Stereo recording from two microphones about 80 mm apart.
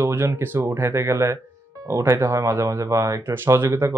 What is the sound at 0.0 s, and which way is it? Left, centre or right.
Speech, right.